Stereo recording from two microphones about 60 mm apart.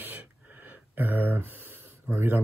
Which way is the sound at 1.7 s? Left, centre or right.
Right.